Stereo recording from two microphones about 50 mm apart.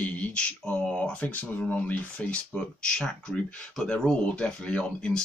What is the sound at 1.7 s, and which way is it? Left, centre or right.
Speech, left.